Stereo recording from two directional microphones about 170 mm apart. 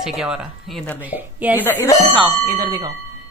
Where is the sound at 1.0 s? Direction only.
10° right (ahead or behind).